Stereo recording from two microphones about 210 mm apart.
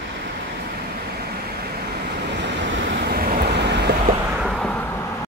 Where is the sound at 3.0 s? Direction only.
45° right (ahead or behind).